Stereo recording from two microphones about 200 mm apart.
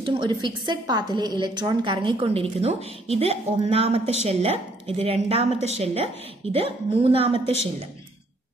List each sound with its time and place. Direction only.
0.0 s a woman's voice: 25° right (ahead or behind)